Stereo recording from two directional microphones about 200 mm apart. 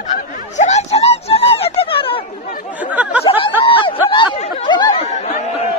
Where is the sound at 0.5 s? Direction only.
35° left (ahead or behind).